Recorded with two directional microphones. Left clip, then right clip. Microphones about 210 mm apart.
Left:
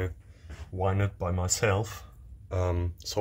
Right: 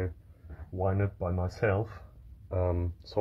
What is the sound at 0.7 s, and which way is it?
Speech, centre (ahead or behind).